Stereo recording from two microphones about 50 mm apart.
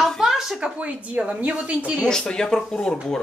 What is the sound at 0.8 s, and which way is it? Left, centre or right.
Speech, right.